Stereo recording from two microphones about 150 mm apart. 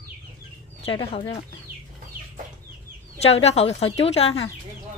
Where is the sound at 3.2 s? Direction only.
45° left (ahead or behind).